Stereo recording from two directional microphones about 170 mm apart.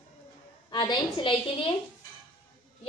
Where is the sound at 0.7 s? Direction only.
25° left (ahead or behind).